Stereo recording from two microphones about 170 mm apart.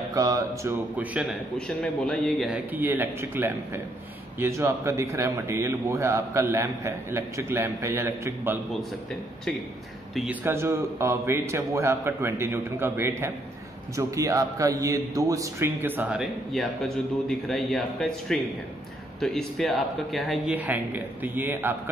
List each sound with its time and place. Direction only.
0.1 s speech: 20° right (ahead or behind)
0.9 s a man's voice: 5° right (ahead or behind)
10.4 s a man's voice: 15° right (ahead or behind)
20.5 s a man's voice: 10° right (ahead or behind)